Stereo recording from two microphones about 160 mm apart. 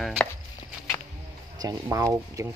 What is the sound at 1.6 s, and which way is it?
Speech, 25° right (ahead or behind).